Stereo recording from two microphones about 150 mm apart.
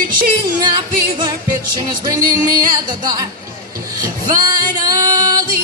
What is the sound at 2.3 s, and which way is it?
Music, 25° right (ahead or behind).